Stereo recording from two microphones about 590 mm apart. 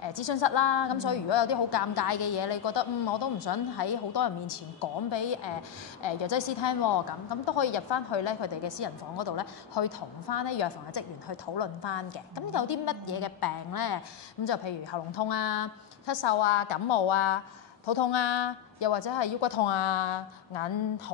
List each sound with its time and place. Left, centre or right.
0.0 s a woman's voice: left